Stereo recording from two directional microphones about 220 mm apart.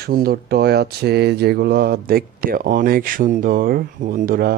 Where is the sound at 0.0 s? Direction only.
45° right (ahead or behind).